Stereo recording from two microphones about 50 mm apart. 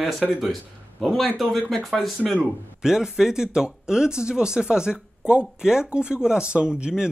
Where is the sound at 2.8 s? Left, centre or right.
Centre.